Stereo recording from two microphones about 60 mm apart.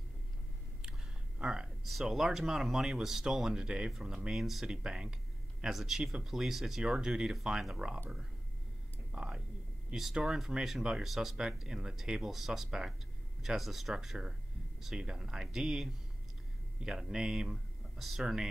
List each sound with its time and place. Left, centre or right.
1.4 s speech: centre
9.1 s a sound: centre
9.9 s speech: centre
17.1 s speech: centre